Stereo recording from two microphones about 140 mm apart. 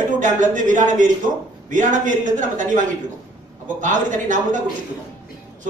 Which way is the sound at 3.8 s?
65° right (ahead or behind).